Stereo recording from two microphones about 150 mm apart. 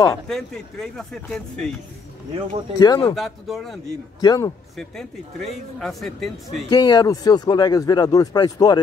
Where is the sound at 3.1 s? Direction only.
Centre (ahead or behind).